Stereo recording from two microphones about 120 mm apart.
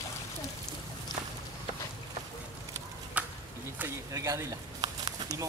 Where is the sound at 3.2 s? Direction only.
10° right (ahead or behind).